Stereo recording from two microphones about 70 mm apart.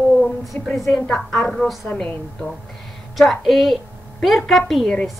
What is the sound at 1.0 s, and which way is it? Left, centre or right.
Speech, centre.